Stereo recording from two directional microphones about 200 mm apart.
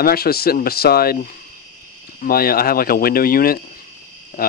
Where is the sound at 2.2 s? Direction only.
50° left (ahead or behind).